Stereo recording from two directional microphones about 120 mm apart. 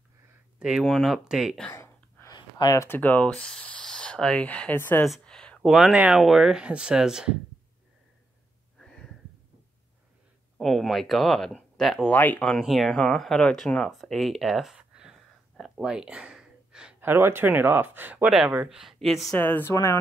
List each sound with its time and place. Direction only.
0.6 s speech: 5° right (ahead or behind)
1.7 s gasp: 20° left (ahead or behind)
2.3 s a sound: 30° left (ahead or behind)
2.9 s speech: 15° left (ahead or behind)
5.0 s speech: 5° left (ahead or behind)
8.7 s a sound: 5° left (ahead or behind)
10.6 s speech: centre (ahead or behind)
12.1 s speech: 15° left (ahead or behind)
12.5 s speech: centre (ahead or behind)
17.0 s speech: 20° right (ahead or behind); by 19.3 s centre (ahead or behind)
19.3 s speech: 15° left (ahead or behind)
19.7 s speech: 25° left (ahead or behind)